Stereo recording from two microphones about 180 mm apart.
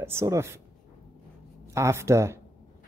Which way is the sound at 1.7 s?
15° right (ahead or behind).